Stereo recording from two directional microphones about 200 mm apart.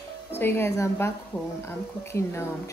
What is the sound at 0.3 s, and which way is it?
Speech, 10° left (ahead or behind).